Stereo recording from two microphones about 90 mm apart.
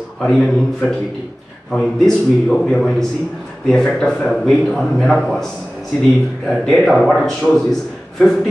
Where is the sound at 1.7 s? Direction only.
5° left (ahead or behind).